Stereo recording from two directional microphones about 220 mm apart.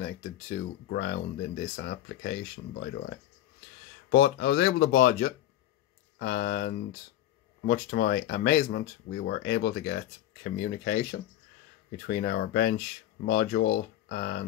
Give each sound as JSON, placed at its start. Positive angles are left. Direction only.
{"t": 0.0, "sound": "speech", "side_deg": 45}
{"t": 4.1, "sound": "speech", "side_deg": 50}